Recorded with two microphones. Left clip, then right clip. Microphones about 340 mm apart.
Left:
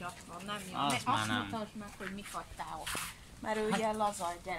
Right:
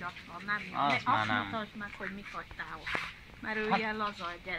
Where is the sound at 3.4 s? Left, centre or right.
Centre.